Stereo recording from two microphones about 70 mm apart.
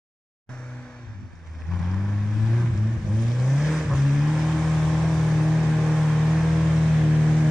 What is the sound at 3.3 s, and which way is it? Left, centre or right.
Vehicle, centre.